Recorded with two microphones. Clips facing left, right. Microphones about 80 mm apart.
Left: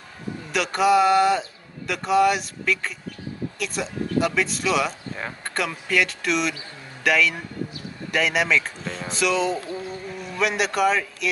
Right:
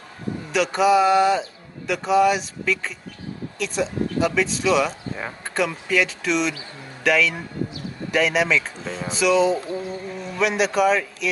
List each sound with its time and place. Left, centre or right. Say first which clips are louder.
0.5 s speech: right 1 dB; centre
9.6 s a sound: right 3 dB; right
10.4 s speech: right 2 dB; centre